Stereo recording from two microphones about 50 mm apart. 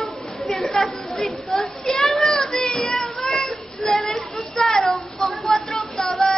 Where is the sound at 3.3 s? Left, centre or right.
Centre.